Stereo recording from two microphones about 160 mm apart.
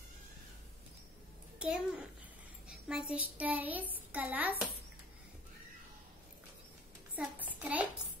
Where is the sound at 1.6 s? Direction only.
5° right (ahead or behind).